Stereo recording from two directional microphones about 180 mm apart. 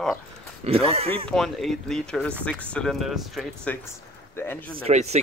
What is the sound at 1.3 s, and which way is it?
Speech, centre (ahead or behind).